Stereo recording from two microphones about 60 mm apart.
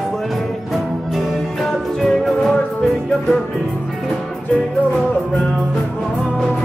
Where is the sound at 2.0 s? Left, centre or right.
Centre.